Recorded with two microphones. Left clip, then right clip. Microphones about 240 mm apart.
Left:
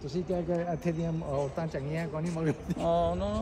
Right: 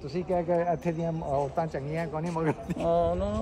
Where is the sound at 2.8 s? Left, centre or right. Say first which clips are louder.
Right 2 dB; right.